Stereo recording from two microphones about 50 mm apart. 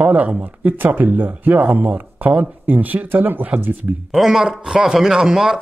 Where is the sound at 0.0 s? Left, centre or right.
Right.